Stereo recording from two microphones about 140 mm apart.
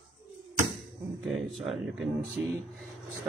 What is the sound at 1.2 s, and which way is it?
Speech, centre (ahead or behind).